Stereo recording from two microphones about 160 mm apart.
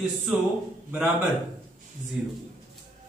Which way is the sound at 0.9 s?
5° right (ahead or behind).